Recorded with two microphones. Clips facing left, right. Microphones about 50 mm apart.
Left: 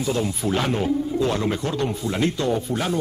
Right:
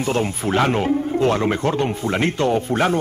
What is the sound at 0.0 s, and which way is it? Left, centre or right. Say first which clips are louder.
Speech: right 3 dB; right.